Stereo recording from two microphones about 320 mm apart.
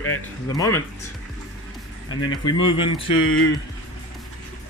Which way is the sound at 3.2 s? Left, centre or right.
Left.